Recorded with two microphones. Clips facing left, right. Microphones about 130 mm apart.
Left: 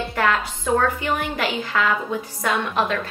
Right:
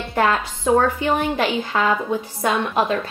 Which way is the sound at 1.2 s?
25° right (ahead or behind).